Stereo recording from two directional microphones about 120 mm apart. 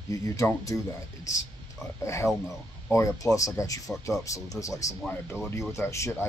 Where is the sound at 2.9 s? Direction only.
25° left (ahead or behind).